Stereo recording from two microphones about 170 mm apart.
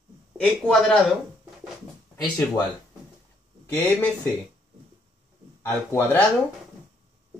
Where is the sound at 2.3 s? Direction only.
10° left (ahead or behind).